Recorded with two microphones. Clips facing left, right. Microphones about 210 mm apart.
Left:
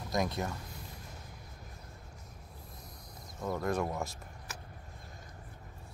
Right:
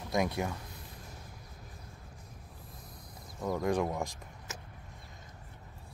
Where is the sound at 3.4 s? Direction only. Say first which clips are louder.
Right 2 dB; 15° right (ahead or behind).